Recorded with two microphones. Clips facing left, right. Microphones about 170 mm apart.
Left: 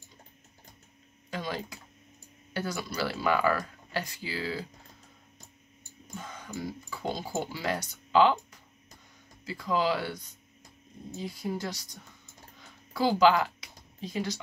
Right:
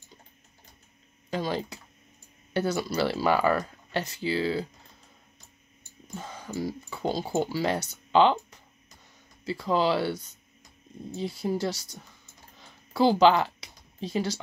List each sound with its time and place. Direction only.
1.3 s speech: 30° right (ahead or behind)
6.1 s speech: 35° right (ahead or behind)
11.1 s speech: 30° right (ahead or behind)
12.9 s speech: 25° right (ahead or behind)